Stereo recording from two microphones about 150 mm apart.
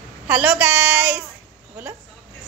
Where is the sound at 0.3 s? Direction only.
10° right (ahead or behind).